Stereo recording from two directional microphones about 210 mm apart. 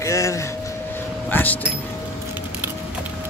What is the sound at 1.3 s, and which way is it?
Speech, 10° left (ahead or behind).